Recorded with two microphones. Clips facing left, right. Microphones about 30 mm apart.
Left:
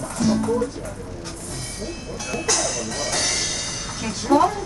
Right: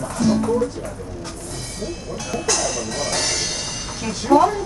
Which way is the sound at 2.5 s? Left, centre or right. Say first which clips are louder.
Right 1 dB; centre.